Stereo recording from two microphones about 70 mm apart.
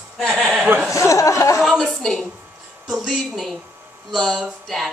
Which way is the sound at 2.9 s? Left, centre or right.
Centre.